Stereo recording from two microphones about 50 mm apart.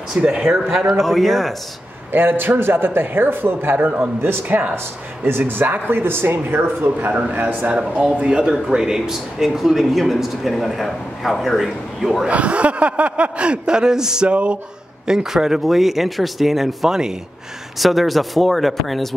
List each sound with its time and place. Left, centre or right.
0.2 s speech: centre
0.7 s speech: centre
2.1 s speech: right
3.7 s a man's voice: right
4.2 s speech: right
7.1 s a man's voice: right
7.7 s speech: centre
12.3 s speech: right
15.0 s speech: centre